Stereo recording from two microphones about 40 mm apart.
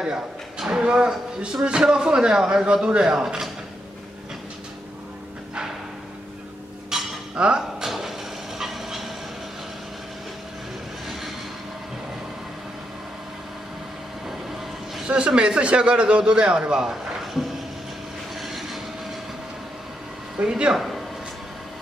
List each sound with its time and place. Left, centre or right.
0.7 s a man's voice: right
2.3 s speech: centre
6.9 s cutlery: centre
7.3 s a man's voice: right
7.8 s mechanisms: centre
8.5 s train: centre
11.1 s vehicle: centre
15.0 s a man's voice: right
17.2 s a sound: centre
18.3 s train: centre
20.4 s a man's voice: right
20.7 s speech: centre